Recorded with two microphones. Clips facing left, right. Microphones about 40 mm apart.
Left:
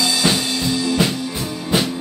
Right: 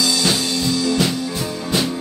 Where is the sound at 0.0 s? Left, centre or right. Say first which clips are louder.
Left 1 dB; left.